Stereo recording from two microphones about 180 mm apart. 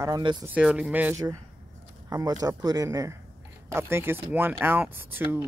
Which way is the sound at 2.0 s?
20° right (ahead or behind).